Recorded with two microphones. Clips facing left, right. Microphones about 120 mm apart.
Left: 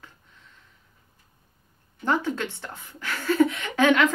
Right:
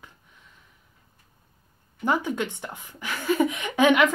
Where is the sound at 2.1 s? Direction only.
15° right (ahead or behind).